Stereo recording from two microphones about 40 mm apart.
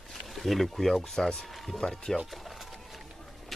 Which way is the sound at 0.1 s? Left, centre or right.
Centre.